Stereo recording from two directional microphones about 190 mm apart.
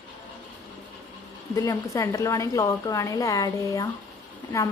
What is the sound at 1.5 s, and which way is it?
A woman's voice, 15° left (ahead or behind).